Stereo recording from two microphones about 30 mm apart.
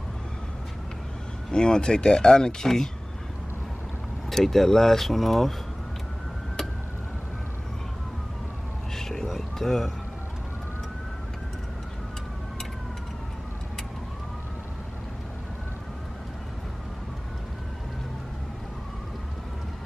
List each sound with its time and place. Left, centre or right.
1.5 s speech: left
4.3 s speech: centre
8.9 s a sound: centre